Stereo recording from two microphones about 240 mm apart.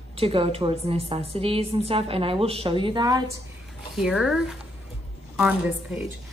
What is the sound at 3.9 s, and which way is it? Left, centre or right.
A woman's voice, centre.